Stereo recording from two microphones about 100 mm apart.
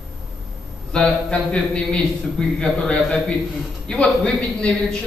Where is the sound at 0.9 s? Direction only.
10° left (ahead or behind).